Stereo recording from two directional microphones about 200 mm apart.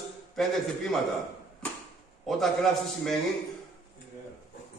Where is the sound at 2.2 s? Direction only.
Centre (ahead or behind).